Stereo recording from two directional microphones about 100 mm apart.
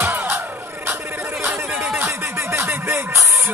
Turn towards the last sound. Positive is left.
turn(degrees=-30)  # may be behind; listen again after turning